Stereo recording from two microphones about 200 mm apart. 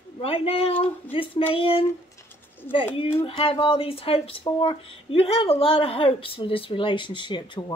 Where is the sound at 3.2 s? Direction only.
25° left (ahead or behind).